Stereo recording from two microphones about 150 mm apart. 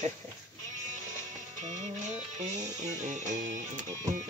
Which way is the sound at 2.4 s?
55° right (ahead or behind).